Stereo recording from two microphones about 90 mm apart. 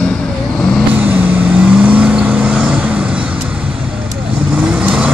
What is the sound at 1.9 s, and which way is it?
Vehicle, 15° right (ahead or behind).